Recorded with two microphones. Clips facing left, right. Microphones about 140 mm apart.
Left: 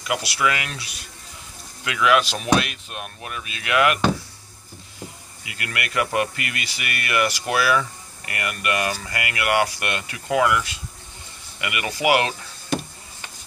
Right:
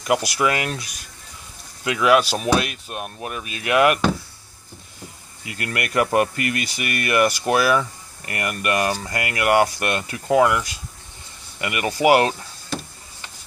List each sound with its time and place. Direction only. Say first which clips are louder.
0.0 s speech: right 4 dB; 45° right (ahead or behind)
5.4 s speech: right 4 dB; 40° right (ahead or behind)